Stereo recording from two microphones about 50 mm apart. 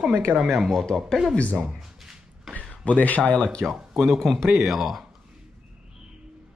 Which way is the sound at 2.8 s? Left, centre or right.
Left.